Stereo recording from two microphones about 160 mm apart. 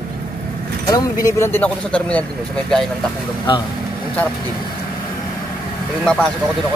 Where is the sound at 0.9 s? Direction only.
20° left (ahead or behind); by 2.8 s 5° left (ahead or behind).